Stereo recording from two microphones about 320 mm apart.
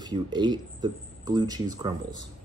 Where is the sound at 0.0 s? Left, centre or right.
Centre.